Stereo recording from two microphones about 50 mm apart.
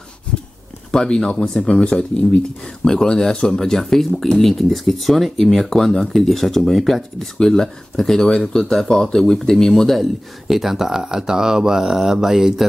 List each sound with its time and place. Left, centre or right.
0.9 s speech: centre